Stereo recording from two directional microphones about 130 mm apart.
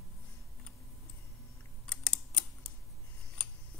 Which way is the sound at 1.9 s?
5° left (ahead or behind).